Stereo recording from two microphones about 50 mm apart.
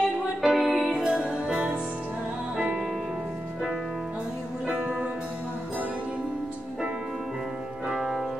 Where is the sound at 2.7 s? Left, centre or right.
Centre.